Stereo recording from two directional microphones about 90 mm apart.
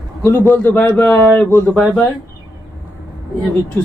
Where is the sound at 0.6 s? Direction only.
25° left (ahead or behind).